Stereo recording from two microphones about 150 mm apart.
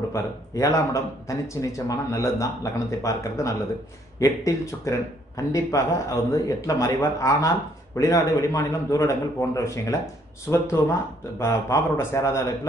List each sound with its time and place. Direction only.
0.1 s a man's voice: 20° left (ahead or behind)